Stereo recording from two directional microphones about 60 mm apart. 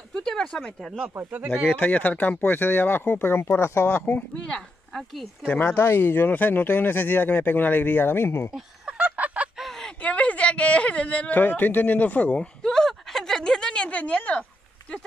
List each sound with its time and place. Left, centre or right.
0.1 s speech: centre
1.7 s speech: left
4.5 s speech: centre
5.5 s speech: left
8.8 s fowl: right
9.6 s a sound: centre
9.9 s speech: left
12.6 s a sound: centre